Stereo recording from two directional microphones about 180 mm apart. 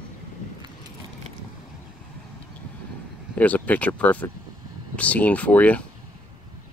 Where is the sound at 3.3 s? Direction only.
10° left (ahead or behind).